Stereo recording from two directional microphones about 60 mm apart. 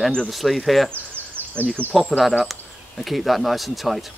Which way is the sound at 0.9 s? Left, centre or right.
Right.